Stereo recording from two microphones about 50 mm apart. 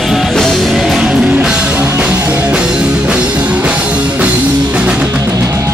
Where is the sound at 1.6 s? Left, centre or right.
Right.